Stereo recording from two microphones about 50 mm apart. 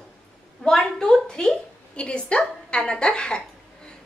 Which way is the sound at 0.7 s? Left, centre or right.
Centre.